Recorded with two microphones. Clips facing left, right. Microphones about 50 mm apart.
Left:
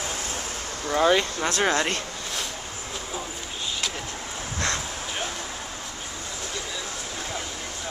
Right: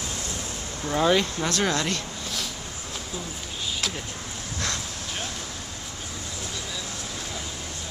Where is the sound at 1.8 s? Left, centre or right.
Left.